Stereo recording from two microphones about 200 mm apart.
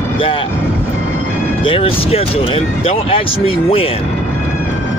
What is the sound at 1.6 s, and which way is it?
Speech, 25° left (ahead or behind).